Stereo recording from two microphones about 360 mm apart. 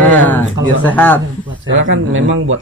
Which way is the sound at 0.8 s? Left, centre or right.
Centre.